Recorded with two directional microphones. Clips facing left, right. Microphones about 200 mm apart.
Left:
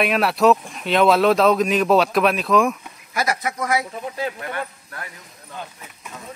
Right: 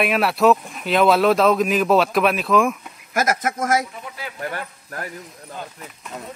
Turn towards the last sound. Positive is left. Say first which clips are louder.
# left 1 dB
turn(degrees=-40)  # may be behind; listen again after turning